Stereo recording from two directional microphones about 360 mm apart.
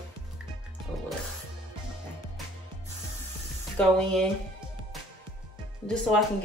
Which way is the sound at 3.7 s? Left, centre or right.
Centre.